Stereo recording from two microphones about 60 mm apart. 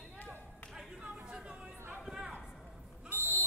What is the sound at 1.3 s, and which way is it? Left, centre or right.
Chatter, centre.